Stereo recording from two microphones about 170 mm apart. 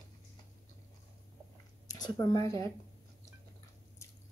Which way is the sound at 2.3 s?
15° left (ahead or behind).